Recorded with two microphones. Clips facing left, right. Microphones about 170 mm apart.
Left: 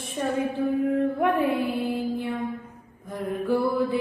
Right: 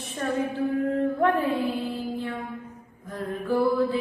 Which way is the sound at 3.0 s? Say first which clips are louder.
Left 3 dB; 15° left (ahead or behind).